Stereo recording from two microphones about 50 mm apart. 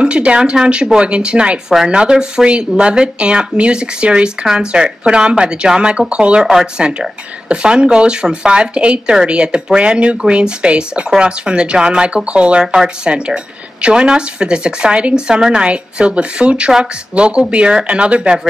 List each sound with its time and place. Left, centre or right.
0.0 s speech: right